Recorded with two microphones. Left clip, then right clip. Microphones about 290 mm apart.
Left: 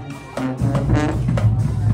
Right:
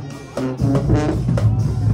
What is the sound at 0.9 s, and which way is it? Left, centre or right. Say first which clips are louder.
Music: right 1 dB; left.